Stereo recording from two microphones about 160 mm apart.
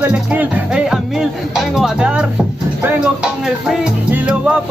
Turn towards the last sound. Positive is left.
turn(degrees=-5)  # may be behind; listen again after turning